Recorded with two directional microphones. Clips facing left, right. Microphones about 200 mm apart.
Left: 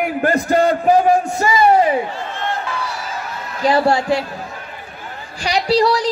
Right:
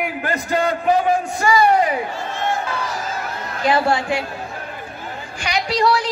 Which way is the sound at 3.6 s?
35° left (ahead or behind).